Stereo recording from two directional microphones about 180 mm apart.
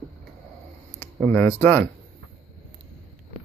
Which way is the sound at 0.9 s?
10° left (ahead or behind).